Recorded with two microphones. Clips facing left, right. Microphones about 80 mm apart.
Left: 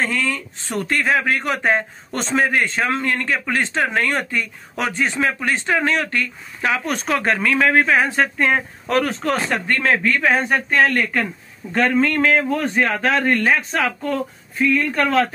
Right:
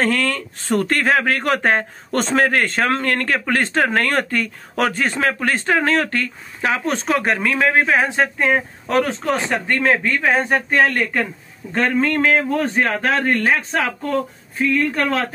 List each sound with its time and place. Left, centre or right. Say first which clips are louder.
0.0 s speech: right 3 dB; right